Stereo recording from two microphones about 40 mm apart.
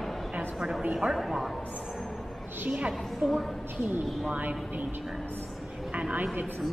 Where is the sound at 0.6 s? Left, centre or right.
Centre.